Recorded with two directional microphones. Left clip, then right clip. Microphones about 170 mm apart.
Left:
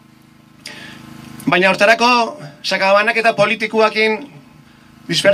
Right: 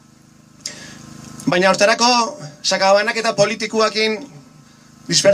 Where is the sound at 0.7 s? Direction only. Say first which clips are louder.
Left 3 dB; 50° right (ahead or behind).